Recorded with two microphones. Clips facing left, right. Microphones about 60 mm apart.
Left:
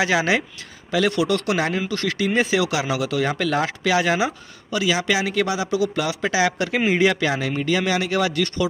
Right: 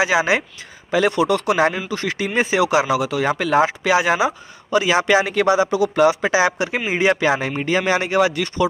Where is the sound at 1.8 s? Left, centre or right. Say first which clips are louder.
Left 1 dB; centre.